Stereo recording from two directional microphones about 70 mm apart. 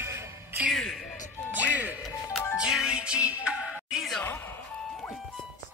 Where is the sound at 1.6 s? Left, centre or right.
Right.